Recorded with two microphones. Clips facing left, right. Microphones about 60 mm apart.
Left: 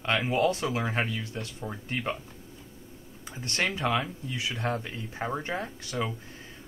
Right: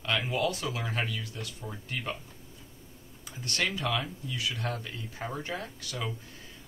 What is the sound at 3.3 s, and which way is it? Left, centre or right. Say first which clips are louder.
Speech: left 2 dB; left.